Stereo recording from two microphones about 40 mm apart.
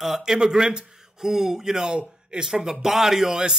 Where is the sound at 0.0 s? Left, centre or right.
Centre.